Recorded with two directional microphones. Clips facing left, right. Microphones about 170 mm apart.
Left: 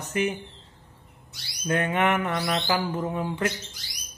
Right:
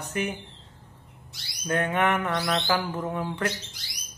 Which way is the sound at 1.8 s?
15° left (ahead or behind).